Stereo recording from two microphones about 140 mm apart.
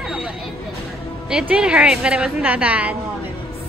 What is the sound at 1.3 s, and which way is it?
A woman's voice, 5° right (ahead or behind).